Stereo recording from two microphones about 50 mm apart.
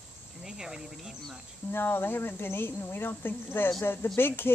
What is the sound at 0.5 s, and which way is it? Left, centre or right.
Speech, centre.